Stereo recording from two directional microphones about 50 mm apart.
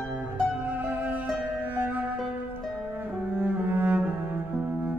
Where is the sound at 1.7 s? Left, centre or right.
Right.